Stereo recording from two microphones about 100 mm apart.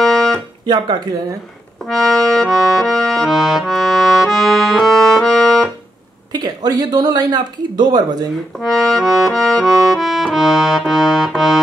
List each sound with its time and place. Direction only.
0.0 s music: 5° left (ahead or behind)
0.7 s speech: 45° right (ahead or behind)
1.9 s accordion: 5° left (ahead or behind)
6.3 s speech: 40° right (ahead or behind)
8.5 s accordion: 5° left (ahead or behind)